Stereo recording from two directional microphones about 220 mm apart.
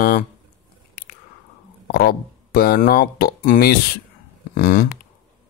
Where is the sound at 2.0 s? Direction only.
45° left (ahead or behind).